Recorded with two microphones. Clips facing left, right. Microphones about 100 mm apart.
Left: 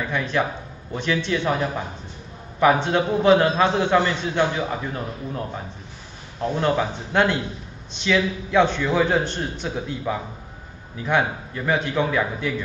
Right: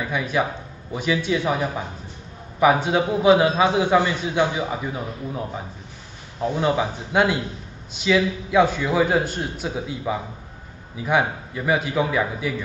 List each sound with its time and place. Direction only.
0.0 s a man's voice: 10° right (ahead or behind)